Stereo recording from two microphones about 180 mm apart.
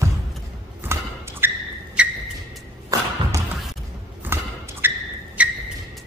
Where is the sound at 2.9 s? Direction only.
20° right (ahead or behind).